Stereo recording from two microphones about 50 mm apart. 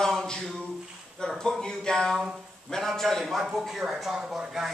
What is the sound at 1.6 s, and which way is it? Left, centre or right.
A man's voice, centre.